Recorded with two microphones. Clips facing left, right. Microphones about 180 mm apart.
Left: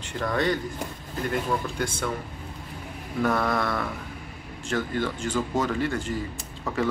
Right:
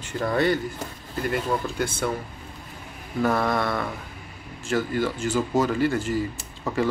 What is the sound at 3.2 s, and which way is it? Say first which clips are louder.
Speech: right 2 dB; 5° right (ahead or behind).